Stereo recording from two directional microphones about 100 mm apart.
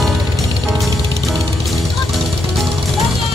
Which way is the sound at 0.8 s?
Centre (ahead or behind).